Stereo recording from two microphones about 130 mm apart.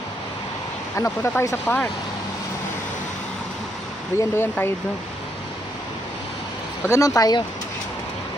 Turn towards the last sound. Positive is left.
turn(degrees=30)  # may be behind; listen again after turning